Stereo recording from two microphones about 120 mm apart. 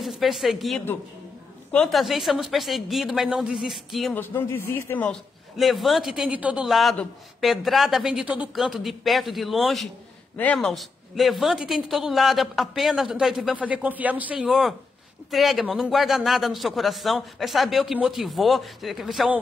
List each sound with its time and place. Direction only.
0.0 s a woman's voice: centre (ahead or behind)
4.1 s speech: 15° left (ahead or behind)
5.6 s a woman's voice: centre (ahead or behind)
10.3 s a woman's voice: 10° left (ahead or behind); by 14.4 s 15° right (ahead or behind)
14.4 s a woman's voice: centre (ahead or behind)